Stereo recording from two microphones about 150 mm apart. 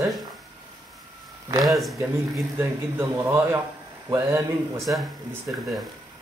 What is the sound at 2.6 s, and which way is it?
Speech, 15° right (ahead or behind).